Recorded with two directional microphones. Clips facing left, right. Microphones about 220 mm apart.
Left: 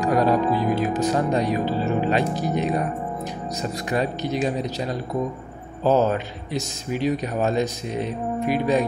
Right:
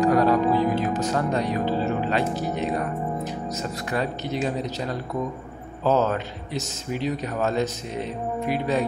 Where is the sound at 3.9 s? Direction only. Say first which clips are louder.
Left 3 dB; 15° left (ahead or behind).